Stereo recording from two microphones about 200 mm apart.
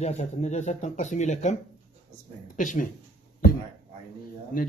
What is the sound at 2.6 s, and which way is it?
Speech, 40° left (ahead or behind).